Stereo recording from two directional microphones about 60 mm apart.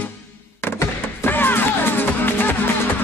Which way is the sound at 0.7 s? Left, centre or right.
Left.